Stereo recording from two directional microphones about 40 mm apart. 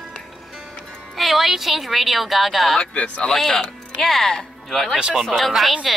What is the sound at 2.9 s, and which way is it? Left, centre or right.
Speech, left.